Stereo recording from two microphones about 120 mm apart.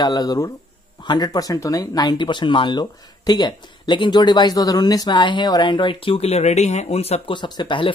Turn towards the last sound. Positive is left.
turn(degrees=40)  # may be behind; listen again after turning